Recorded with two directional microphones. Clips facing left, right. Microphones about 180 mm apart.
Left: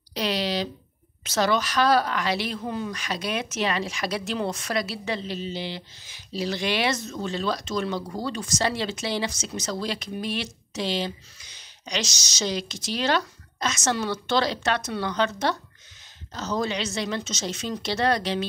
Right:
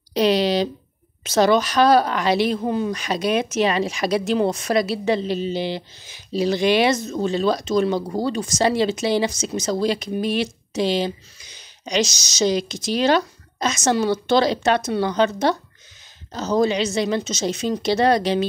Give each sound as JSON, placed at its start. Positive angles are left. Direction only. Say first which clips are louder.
{"t": 0.1, "sound": "speech", "louder": "right 9 dB", "side_deg": -20}
{"t": 16.6, "sound": "speech", "louder": "right 8 dB", "side_deg": -10}